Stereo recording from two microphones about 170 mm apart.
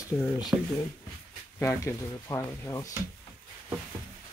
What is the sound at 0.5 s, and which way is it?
Speech, 10° right (ahead or behind).